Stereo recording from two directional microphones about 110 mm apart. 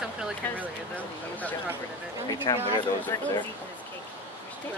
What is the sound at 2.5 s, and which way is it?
Speech, 35° left (ahead or behind).